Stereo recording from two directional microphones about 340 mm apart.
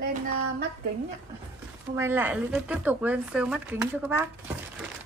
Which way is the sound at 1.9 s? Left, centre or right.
Centre.